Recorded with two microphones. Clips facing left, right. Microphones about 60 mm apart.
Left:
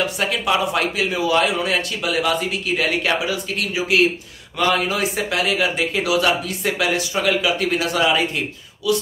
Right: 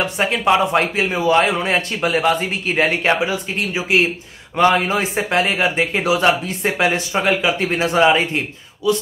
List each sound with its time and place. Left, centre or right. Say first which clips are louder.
0.0 s a man's voice: right 3 dB; right